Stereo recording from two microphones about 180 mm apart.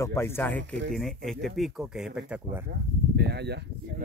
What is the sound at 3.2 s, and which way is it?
Speech, 65° right (ahead or behind).